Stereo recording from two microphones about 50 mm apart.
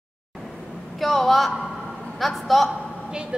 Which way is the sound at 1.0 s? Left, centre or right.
Centre.